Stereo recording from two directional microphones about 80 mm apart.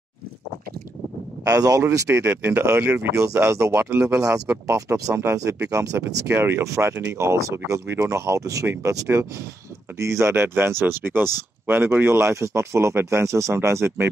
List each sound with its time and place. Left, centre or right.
1.4 s speech: right
2.0 s speech: right
6.2 s speech: right